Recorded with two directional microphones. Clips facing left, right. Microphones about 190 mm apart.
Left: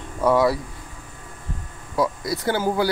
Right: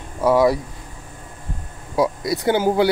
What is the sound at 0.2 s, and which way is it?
Speech, 10° right (ahead or behind).